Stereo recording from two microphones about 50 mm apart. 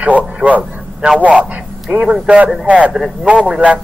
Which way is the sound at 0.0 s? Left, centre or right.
Right.